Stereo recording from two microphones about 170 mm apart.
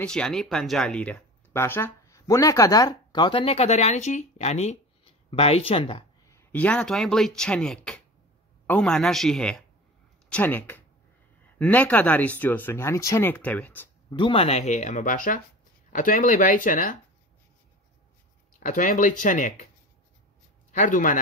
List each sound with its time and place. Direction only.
0.0 s speech: 5° left (ahead or behind); by 6.0 s 30° left (ahead or behind)
6.2 s speech: 15° left (ahead or behind)
14.1 s speech: 30° left (ahead or behind); by 16.9 s 50° left (ahead or behind)
18.6 s speech: 50° left (ahead or behind)
20.7 s speech: 50° left (ahead or behind)